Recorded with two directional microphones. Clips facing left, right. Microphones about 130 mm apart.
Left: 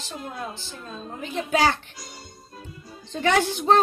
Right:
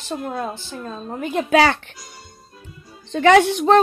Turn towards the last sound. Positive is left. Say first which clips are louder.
# right 7 dB
turn(degrees=-70)  # may be behind; listen again after turning